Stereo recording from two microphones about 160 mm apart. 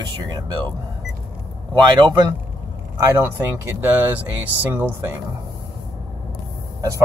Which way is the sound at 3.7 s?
10° right (ahead or behind).